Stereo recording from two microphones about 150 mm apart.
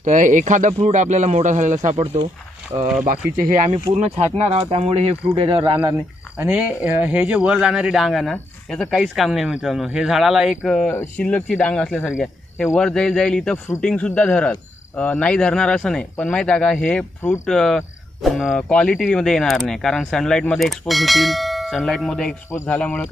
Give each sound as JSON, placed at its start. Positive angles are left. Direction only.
{"t": 0.0, "sound": "speech", "side_deg": -55}
{"t": 2.7, "sound": "speech", "side_deg": -40}
{"t": 3.1, "sound": "speech", "side_deg": -65}
{"t": 4.0, "sound": "speech", "side_deg": -45}
{"t": 6.3, "sound": "speech", "side_deg": -10}